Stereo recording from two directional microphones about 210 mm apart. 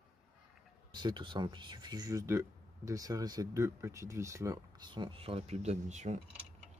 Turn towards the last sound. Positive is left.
turn(degrees=-35)  # may be behind; listen again after turning